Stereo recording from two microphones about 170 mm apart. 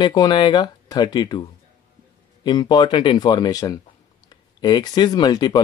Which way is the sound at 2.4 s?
25° left (ahead or behind).